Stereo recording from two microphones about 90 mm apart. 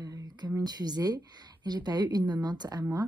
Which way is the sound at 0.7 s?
45° right (ahead or behind).